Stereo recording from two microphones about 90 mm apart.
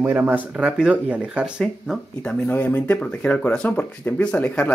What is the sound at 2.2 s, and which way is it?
Speech, 20° left (ahead or behind).